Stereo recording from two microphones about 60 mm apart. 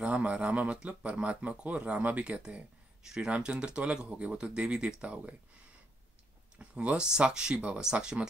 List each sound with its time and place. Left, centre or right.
0.0 s speech: right
6.5 s speech: centre